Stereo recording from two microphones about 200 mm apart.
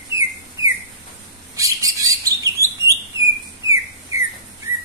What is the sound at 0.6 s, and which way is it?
Bird, 70° right (ahead or behind).